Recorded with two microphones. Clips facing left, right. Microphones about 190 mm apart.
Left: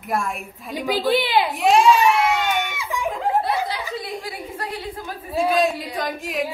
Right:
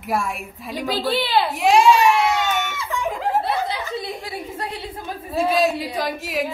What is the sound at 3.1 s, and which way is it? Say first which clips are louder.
Chuckle: left 1 dB; centre (ahead or behind).